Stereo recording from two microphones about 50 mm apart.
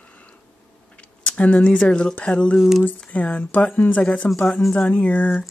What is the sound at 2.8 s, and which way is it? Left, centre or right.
A woman's voice, left.